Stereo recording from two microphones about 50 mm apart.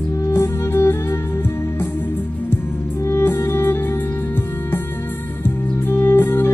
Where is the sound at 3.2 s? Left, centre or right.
Left.